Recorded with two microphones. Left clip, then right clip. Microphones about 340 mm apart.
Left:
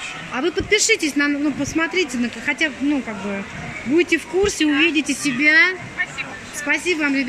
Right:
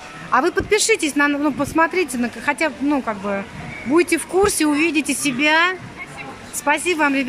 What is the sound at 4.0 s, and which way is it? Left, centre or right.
Speech, centre.